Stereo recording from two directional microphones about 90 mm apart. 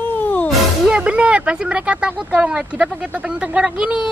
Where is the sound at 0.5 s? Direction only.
Centre (ahead or behind).